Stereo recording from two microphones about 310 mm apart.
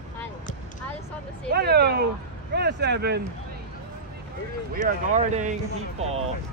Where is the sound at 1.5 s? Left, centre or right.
Right.